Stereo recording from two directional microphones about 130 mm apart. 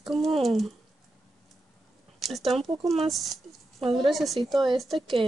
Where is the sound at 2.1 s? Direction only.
Centre (ahead or behind).